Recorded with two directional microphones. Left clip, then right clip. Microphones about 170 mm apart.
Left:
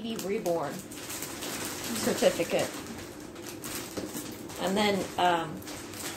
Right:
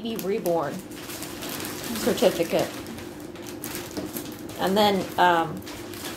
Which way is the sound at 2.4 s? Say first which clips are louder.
Right 4 dB; 30° right (ahead or behind).